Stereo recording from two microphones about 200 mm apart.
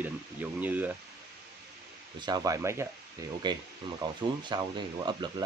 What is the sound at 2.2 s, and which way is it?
Speech, 20° right (ahead or behind).